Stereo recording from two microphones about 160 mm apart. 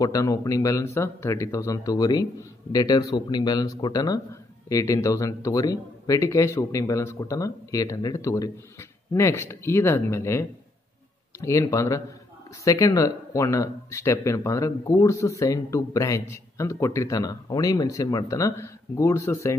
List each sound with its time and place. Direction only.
0.0 s speech: 20° left (ahead or behind)